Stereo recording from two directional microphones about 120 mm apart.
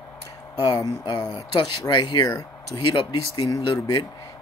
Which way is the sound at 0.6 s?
35° left (ahead or behind).